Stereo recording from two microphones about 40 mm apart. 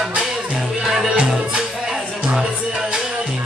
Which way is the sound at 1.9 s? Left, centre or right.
Centre.